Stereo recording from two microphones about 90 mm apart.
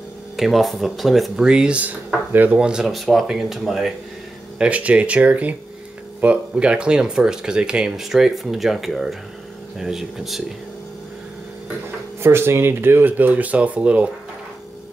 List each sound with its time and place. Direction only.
0.4 s speech: centre (ahead or behind)
4.6 s speech: 15° right (ahead or behind)
12.2 s speech: 25° right (ahead or behind)